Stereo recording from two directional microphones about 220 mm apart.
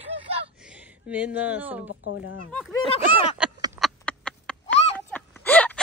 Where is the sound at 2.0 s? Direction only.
75° left (ahead or behind).